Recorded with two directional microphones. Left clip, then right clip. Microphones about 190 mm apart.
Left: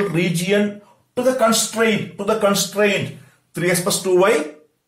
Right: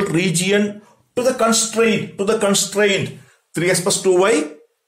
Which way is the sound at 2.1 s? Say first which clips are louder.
Even; 50° right (ahead or behind).